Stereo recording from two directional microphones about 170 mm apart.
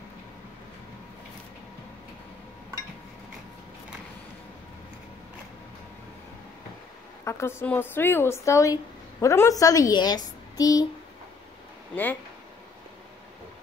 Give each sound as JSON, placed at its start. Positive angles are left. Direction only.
{"t": 7.2, "sound": "a woman's voice", "side_deg": 15}
{"t": 11.9, "sound": "speech", "side_deg": 10}